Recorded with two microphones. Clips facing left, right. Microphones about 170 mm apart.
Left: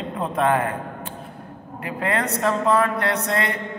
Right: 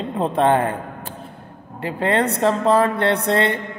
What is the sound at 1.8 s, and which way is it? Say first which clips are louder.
Speech: right 5 dB; 30° right (ahead or behind).